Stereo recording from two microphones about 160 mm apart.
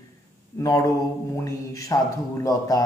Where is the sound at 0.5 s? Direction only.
20° left (ahead or behind).